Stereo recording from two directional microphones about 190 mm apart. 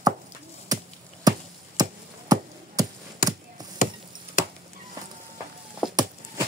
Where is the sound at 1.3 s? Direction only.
20° right (ahead or behind).